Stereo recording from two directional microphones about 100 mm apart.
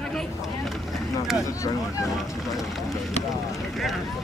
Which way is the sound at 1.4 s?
35° left (ahead or behind).